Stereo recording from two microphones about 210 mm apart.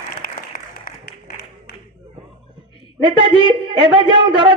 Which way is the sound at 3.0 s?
25° right (ahead or behind).